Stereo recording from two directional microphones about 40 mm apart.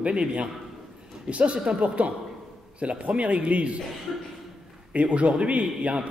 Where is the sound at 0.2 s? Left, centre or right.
Right.